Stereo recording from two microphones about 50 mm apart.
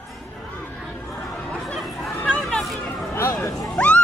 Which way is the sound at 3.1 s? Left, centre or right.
Left.